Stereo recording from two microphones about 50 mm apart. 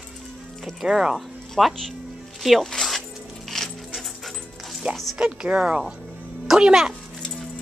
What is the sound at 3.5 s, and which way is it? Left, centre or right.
Dog, centre.